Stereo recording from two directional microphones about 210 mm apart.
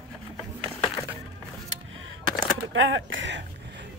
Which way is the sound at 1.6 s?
70° right (ahead or behind).